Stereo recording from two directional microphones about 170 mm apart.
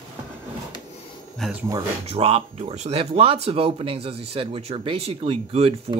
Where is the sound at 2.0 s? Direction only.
35° right (ahead or behind).